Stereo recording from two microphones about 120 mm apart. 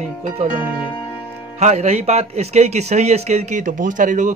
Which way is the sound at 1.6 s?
75° right (ahead or behind).